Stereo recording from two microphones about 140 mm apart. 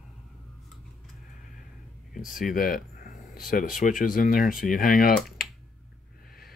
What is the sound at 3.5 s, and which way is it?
Speech, 75° left (ahead or behind).